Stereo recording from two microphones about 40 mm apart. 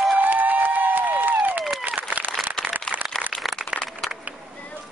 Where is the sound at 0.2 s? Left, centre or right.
Right.